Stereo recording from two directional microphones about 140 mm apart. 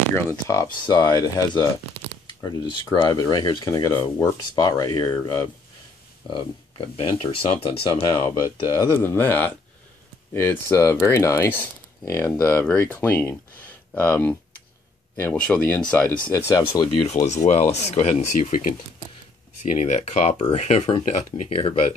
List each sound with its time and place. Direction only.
0.7 s speech: 30° left (ahead or behind)
6.3 s speech: 40° left (ahead or behind)
17.1 s speech: 55° left (ahead or behind)
18.5 s speech: 70° left (ahead or behind)
19.6 s speech: 60° left (ahead or behind); by 21.7 s 45° left (ahead or behind)